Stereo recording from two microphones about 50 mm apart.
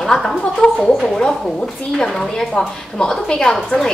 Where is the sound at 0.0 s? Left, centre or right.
Centre.